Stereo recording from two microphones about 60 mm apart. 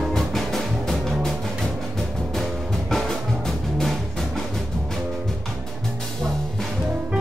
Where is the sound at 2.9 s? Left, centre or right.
Centre.